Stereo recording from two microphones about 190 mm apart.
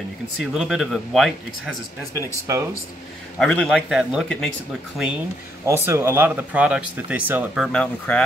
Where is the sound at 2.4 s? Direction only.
15° right (ahead or behind).